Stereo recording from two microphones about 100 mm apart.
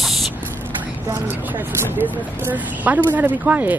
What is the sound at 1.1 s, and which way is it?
Speech, 25° right (ahead or behind).